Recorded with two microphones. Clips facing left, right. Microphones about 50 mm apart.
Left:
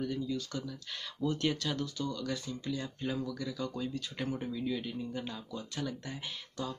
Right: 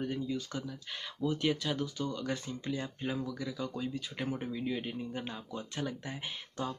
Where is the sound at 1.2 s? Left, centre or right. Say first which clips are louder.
Right 1 dB; centre.